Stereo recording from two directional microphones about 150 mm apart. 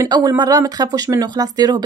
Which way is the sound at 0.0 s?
25° right (ahead or behind).